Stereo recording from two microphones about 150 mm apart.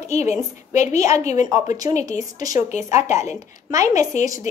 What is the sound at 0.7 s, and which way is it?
Speech, 50° left (ahead or behind).